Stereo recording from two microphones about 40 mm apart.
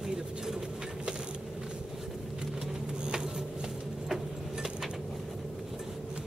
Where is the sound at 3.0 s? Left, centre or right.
Centre.